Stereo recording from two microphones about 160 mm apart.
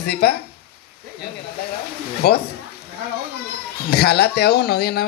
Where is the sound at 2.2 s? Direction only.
80° left.